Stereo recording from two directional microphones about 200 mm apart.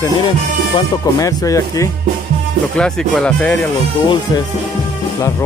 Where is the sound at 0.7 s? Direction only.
15° left (ahead or behind).